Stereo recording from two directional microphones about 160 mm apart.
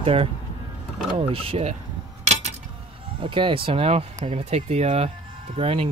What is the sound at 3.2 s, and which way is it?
Speech, 30° right (ahead or behind).